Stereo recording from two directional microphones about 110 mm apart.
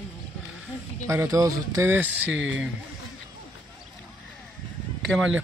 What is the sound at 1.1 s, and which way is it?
Speech, 30° right (ahead or behind).